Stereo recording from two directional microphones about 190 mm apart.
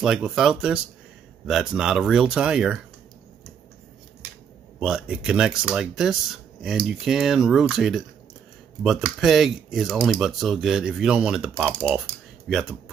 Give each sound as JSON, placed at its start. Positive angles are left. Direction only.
{"t": 0.0, "sound": "speech", "side_deg": 0}
{"t": 4.7, "sound": "speech", "side_deg": -5}